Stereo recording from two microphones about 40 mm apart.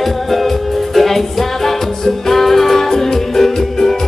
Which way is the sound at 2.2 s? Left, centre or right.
Centre.